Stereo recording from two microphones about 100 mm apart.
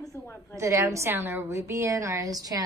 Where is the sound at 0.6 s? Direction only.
30° right (ahead or behind).